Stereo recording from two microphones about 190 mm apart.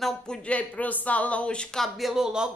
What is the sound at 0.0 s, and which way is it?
A woman's voice, 5° left (ahead or behind).